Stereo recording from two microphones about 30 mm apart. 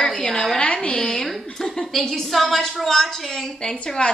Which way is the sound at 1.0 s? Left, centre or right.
Centre.